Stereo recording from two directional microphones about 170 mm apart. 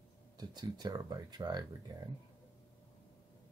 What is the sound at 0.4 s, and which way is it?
Speech, 25° right (ahead or behind).